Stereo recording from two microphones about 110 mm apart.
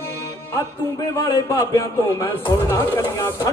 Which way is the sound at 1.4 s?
25° left (ahead or behind).